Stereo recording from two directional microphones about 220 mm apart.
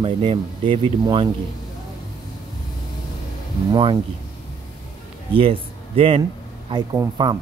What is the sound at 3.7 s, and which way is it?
Speech, 20° right (ahead or behind).